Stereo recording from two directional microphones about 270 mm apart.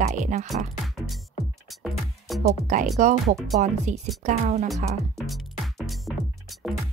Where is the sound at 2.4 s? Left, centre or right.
Right.